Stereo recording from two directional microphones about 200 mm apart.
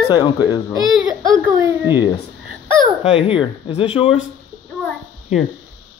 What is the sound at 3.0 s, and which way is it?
Speech, 30° left (ahead or behind).